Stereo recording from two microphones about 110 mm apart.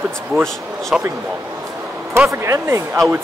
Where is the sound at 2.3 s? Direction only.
25° right (ahead or behind).